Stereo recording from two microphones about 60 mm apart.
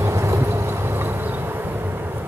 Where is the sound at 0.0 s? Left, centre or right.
Right.